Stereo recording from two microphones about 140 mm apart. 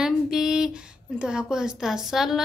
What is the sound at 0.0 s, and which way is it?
A woman's voice, 5° right (ahead or behind).